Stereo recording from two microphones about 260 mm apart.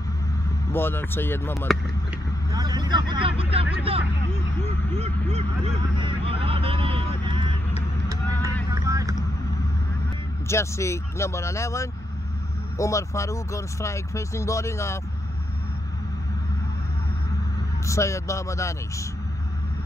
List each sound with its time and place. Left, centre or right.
0.7 s speech: centre
2.5 s speech: centre
6.0 s vehicle: right
10.4 s speech: centre
17.8 s speech: centre